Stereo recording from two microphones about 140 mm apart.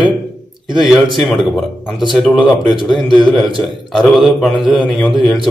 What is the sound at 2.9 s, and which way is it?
A man's voice, 5° right (ahead or behind).